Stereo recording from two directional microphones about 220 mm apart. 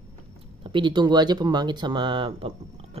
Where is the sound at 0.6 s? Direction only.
20° right (ahead or behind).